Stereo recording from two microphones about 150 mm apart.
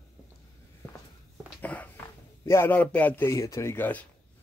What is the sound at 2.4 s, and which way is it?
Speech, 15° left (ahead or behind).